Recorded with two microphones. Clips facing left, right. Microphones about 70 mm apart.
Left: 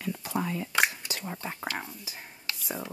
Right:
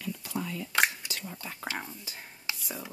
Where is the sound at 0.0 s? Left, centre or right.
Left.